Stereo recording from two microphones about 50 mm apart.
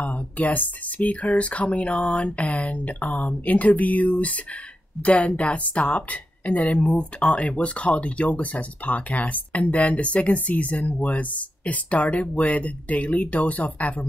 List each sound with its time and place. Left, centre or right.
0.0 s a woman's voice: left